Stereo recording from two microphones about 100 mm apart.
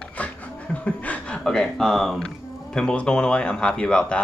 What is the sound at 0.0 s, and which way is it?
Speech, 15° left (ahead or behind).